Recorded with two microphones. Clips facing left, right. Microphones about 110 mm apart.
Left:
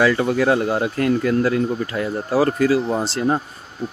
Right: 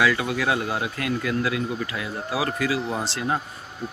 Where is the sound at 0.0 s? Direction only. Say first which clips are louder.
Left 6 dB; 40° left (ahead or behind).